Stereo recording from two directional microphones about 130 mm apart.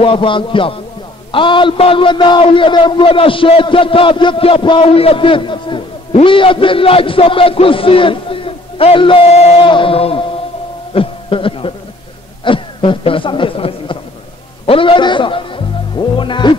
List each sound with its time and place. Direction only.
0.0 s a man's voice: 40° left (ahead or behind)
10.9 s a sound: 45° left (ahead or behind)
12.4 s chuckle: 40° left (ahead or behind)
14.7 s music: 40° left (ahead or behind)